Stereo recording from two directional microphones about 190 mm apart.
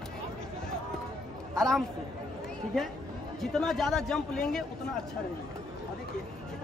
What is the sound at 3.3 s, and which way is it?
A man's voice, centre (ahead or behind).